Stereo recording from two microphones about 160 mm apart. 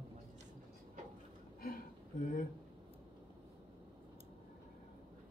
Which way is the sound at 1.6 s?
65° left (ahead or behind).